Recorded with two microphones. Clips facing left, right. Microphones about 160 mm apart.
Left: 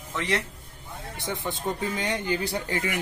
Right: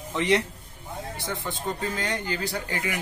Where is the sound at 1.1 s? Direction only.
20° left (ahead or behind).